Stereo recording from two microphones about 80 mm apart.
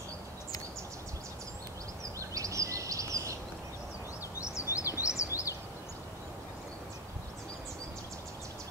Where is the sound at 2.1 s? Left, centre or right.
Right.